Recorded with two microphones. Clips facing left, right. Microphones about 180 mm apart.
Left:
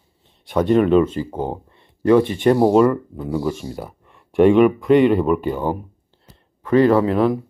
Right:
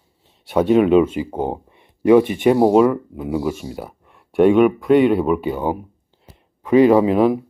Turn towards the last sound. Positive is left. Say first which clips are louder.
# right 2 dB
turn(degrees=-10)  # may be behind; listen again after turning